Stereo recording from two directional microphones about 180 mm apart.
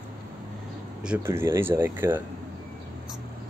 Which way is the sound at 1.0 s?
10° right (ahead or behind).